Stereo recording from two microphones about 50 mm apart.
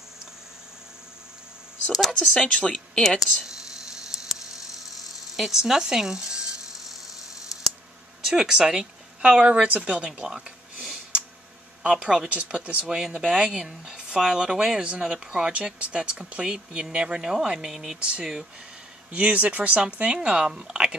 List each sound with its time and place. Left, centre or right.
1.9 s speech: centre
2.4 s a woman's voice: centre
4.1 s a sound: centre
8.3 s speech: centre
10.2 s a sound: centre
11.9 s speech: centre
12.9 s speech: centre
19.1 s speech: right